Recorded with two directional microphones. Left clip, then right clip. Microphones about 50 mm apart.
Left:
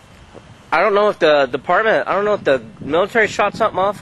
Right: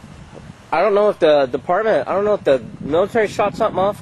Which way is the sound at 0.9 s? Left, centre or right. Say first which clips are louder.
Right 1 dB; centre.